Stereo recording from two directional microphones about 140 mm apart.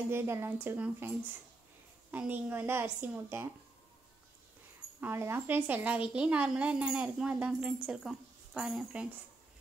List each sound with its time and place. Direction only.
0.1 s a woman's voice: 15° right (ahead or behind)
5.0 s a woman's voice: 15° right (ahead or behind)